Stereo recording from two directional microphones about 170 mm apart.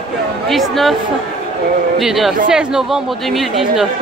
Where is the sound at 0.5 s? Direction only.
Centre (ahead or behind).